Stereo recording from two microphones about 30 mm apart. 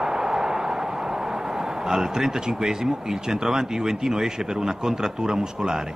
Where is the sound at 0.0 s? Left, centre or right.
Centre.